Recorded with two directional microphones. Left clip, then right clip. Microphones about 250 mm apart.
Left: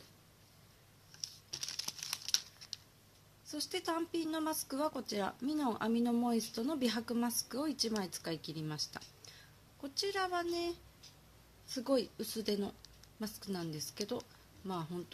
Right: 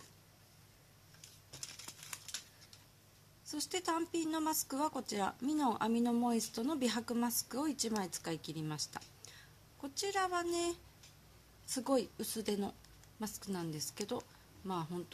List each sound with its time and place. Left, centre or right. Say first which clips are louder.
1.9 s crumpling: left 8 dB; left
3.4 s speech: even; centre